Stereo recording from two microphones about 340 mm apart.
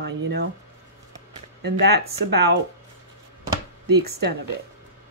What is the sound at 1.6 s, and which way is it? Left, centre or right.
Speech, right.